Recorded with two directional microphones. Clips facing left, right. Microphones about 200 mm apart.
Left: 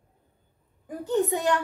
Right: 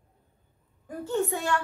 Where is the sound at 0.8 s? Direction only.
15° left (ahead or behind).